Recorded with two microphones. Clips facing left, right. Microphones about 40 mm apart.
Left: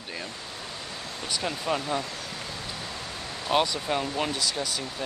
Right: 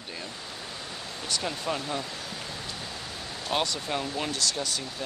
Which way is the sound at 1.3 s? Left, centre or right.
Centre.